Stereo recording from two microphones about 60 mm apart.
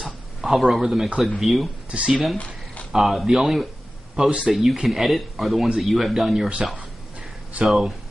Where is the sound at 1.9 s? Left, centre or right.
Centre.